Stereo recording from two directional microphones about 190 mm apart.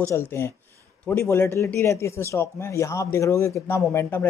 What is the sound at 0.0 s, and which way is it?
Speech, 15° left (ahead or behind).